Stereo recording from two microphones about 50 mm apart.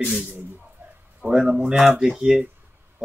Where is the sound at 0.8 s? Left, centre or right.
Right.